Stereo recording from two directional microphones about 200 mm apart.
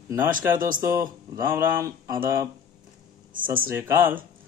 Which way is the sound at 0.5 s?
45° right (ahead or behind).